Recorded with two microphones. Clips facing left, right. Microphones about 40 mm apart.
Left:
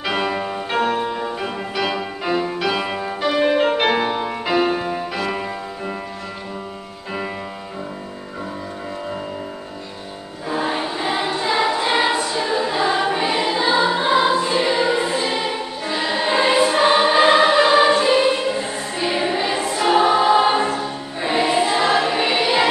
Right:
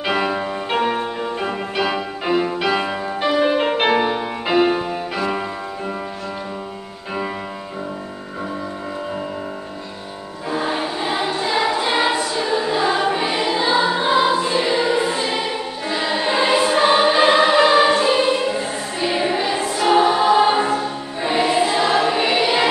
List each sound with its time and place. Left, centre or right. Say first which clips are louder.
0.0 s music: right 1 dB; centre
2.4 s music: right 2 dB; centre
3.3 s music: even; centre
10.5 s music: even; centre
11.2 s choir: left 1 dB; centre
13.5 s music: right 1 dB; centre
15.9 s choir: even; centre